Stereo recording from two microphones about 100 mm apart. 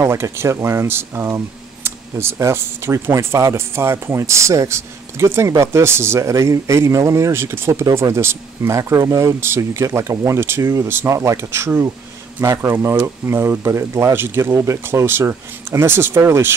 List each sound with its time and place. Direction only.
0.0 s speech: 25° right (ahead or behind)